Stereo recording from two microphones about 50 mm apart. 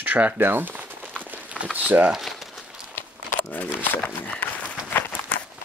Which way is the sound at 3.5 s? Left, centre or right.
Left.